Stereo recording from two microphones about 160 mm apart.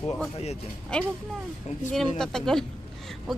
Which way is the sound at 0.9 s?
5° left (ahead or behind).